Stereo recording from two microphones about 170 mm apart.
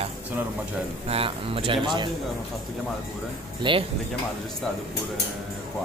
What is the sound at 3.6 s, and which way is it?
Speech, 30° right (ahead or behind).